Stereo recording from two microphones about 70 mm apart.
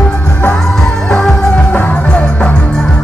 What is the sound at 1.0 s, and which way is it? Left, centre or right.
Music, centre.